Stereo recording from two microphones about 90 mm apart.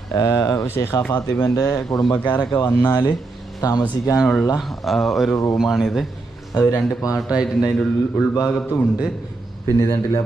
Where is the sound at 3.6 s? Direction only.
40° left (ahead or behind).